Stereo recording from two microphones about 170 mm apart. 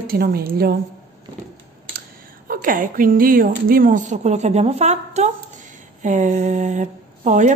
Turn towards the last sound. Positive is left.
turn(degrees=-45)  # may be behind; listen again after turning